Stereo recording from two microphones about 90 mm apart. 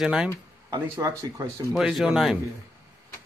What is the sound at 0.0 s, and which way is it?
Speech, 10° right (ahead or behind).